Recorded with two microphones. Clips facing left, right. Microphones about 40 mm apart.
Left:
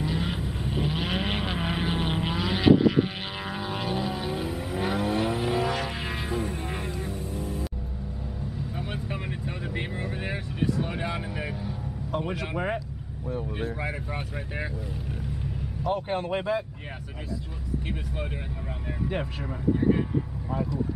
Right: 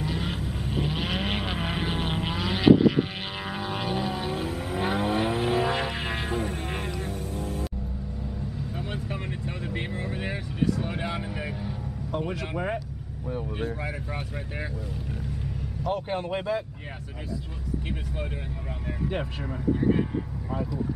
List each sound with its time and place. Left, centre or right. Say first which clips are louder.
0.0 s vehicle: left 1 dB; centre; by 6.9 s right
7.2 s music: even; centre
8.7 s vehicle: even; centre
15.8 s vehicle: left 1 dB; centre
19.0 s speech: even; centre